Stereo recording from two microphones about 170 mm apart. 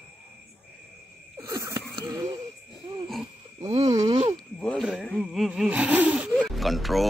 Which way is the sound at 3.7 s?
25° right (ahead or behind).